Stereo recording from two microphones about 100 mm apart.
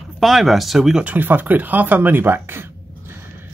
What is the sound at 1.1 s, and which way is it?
Speech, 20° right (ahead or behind).